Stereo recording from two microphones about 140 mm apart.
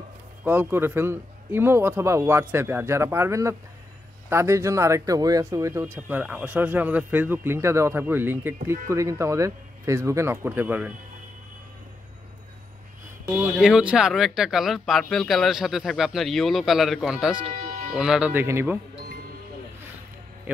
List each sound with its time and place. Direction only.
0.4 s speech: 15° right (ahead or behind)
13.6 s speech: 5° right (ahead or behind)
18.3 s speech: 15° right (ahead or behind)